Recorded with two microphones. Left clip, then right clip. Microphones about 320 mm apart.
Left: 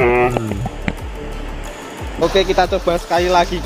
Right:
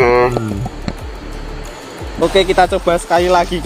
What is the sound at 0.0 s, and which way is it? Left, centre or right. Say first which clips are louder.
Music: right 3 dB; right.